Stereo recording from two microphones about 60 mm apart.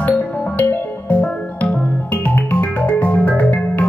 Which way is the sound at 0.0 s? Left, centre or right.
Left.